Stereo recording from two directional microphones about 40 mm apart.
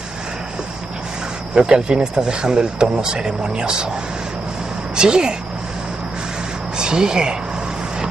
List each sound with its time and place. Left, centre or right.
1.5 s speech: centre
4.9 s speech: right
6.8 s speech: centre